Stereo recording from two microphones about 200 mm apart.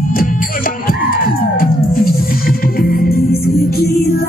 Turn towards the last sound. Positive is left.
turn(degrees=45)  # may be behind; listen again after turning